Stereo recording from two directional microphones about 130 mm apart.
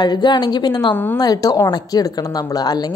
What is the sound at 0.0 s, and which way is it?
Speech, 35° left (ahead or behind).